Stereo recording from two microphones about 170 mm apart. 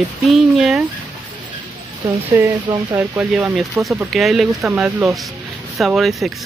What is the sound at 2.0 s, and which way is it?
Speech, 15° right (ahead or behind).